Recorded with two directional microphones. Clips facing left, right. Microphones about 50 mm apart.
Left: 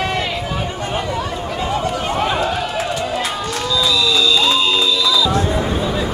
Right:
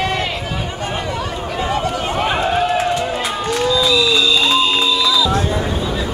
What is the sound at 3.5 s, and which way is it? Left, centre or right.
Music, centre.